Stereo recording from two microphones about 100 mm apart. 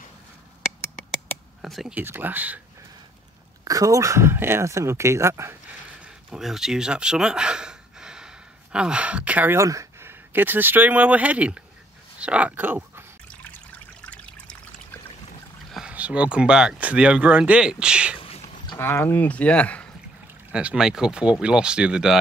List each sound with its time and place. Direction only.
1.6 s speech: 5° right (ahead or behind)
2.0 s speech: 20° right (ahead or behind)
3.6 s speech: 35° right (ahead or behind)
5.9 s a sound: 10° right (ahead or behind)
8.7 s speech: 10° right (ahead or behind)
9.6 s speech: 30° right (ahead or behind)
13.3 s trickle: 15° left (ahead or behind)
15.9 s speech: 15° right (ahead or behind)
18.1 s a sound: 80° left
18.8 s speech: 25° left (ahead or behind)
20.5 s speech: 10° right (ahead or behind)